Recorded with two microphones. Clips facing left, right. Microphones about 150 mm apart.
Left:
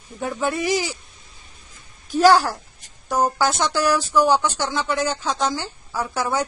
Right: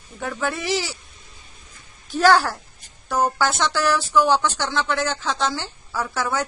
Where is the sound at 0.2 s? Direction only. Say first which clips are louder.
Left 3 dB; 15° left (ahead or behind).